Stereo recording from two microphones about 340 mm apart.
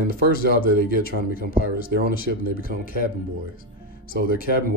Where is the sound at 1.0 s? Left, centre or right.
Left.